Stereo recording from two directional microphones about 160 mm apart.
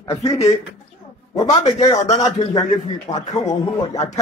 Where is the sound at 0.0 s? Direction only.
20° left (ahead or behind).